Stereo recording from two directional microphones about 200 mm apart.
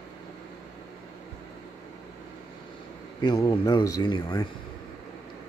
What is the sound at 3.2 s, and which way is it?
Speech, 20° left (ahead or behind).